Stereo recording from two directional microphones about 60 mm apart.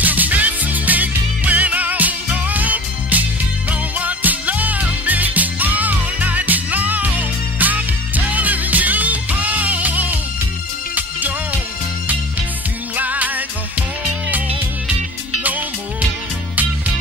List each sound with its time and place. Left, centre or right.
0.0 s music: right
12.9 s music: right